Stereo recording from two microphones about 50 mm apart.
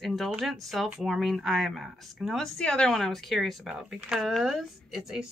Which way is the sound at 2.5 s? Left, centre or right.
Centre.